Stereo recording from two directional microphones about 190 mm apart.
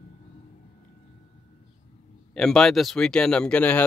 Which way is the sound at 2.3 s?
5° left (ahead or behind).